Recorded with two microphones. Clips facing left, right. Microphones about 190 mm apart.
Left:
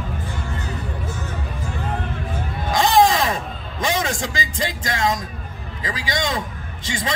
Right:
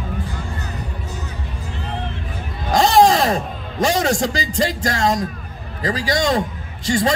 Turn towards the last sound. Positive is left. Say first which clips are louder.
# right 8 dB
turn(degrees=-40)  # may be behind; listen again after turning